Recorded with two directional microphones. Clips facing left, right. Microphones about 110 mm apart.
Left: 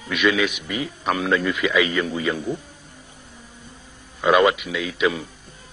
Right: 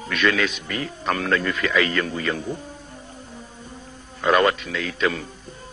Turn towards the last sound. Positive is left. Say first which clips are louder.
# left 2 dB
turn(degrees=10)  # may be behind; listen again after turning